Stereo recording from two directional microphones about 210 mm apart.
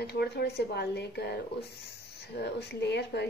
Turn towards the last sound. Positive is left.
turn(degrees=55)  # may be behind; listen again after turning